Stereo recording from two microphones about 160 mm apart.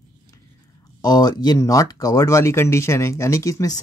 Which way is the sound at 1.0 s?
25° left (ahead or behind).